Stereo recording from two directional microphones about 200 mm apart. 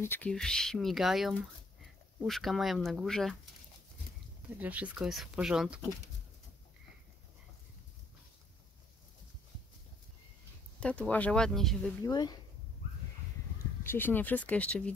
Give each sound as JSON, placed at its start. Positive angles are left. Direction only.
{"t": 0.0, "sound": "speech", "side_deg": 10}
{"t": 4.6, "sound": "speech", "side_deg": -5}
{"t": 10.8, "sound": "speech", "side_deg": 5}
{"t": 12.0, "sound": "speech", "side_deg": 20}
{"t": 13.8, "sound": "speech", "side_deg": 10}